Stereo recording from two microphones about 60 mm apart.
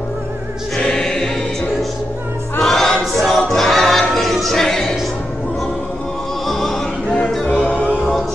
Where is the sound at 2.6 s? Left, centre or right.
Centre.